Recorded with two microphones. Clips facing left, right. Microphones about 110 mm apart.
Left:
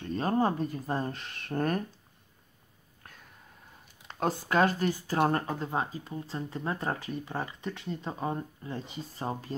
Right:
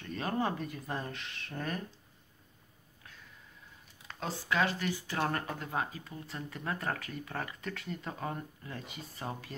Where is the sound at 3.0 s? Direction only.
50° left (ahead or behind).